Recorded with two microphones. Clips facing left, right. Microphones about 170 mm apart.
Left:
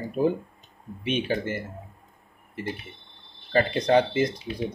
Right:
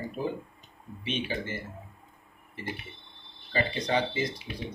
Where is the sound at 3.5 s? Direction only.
50° left (ahead or behind).